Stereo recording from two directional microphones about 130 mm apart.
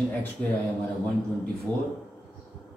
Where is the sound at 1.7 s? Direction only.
10° left (ahead or behind).